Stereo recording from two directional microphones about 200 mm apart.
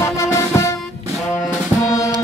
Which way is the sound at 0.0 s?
15° left (ahead or behind).